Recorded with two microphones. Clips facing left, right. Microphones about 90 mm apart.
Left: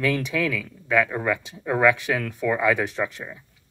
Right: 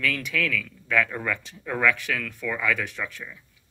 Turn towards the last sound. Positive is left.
turn(degrees=25)  # may be behind; listen again after turning